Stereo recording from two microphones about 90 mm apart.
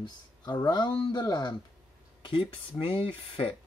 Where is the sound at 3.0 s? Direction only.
90° left.